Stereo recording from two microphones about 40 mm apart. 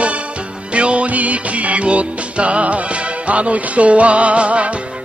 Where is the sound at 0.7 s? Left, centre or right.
Right.